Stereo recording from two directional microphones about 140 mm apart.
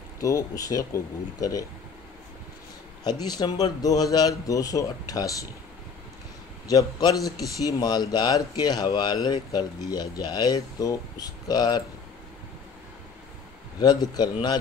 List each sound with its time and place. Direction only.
0.2 s speech: 25° left (ahead or behind)
3.0 s speech: 30° left (ahead or behind)
6.7 s speech: 25° left (ahead or behind)
13.7 s speech: 30° left (ahead or behind)